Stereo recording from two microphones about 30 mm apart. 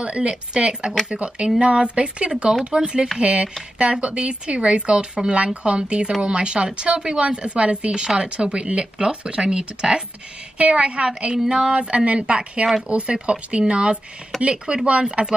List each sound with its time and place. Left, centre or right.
0.0 s speech: right
11.9 s speech: right